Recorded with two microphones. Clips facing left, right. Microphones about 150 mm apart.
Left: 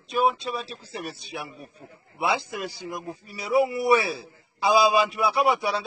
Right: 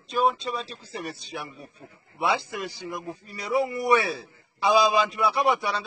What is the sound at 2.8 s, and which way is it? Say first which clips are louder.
Speech: even; 15° left (ahead or behind).